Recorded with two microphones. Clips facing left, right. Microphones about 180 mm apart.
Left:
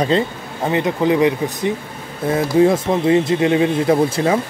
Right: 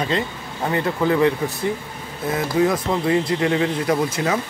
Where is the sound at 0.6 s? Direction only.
20° left (ahead or behind).